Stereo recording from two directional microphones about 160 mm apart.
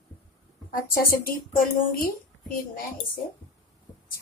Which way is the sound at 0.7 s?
65° left (ahead or behind).